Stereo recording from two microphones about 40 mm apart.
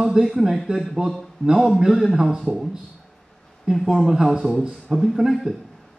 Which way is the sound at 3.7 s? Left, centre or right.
Centre.